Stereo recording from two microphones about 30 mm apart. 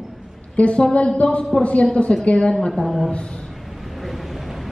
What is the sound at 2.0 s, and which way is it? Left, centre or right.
Speech, left.